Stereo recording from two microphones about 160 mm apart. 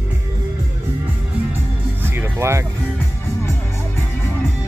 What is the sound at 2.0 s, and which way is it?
Music, 15° right (ahead or behind).